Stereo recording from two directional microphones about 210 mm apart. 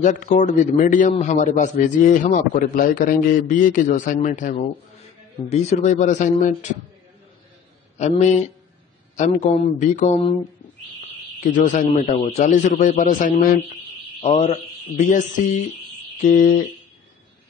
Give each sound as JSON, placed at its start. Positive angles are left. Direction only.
{"t": 0.0, "sound": "a man's voice", "side_deg": 35}
{"t": 8.0, "sound": "a man's voice", "side_deg": 35}
{"t": 11.5, "sound": "a man's voice", "side_deg": 35}